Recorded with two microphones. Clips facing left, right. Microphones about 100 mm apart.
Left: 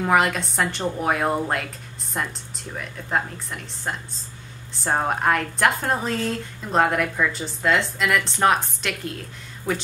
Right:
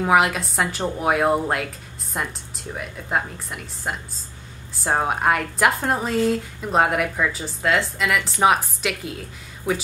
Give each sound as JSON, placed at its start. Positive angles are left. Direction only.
{"t": 0.0, "sound": "a woman's voice", "side_deg": -5}